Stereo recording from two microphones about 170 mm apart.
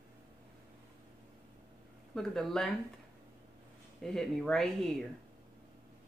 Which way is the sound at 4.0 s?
5° left (ahead or behind).